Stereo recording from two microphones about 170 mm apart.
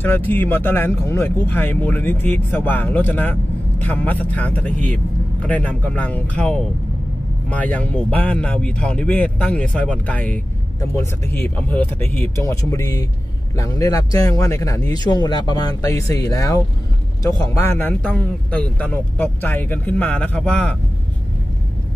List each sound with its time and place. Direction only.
0.3 s speech: 10° left (ahead or behind)